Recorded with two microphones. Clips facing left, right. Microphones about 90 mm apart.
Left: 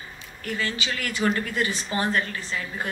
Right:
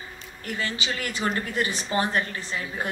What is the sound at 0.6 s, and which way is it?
A woman's voice, 20° right (ahead or behind).